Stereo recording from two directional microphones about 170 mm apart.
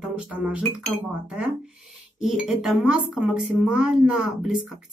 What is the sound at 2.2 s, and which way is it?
Speech, centre (ahead or behind).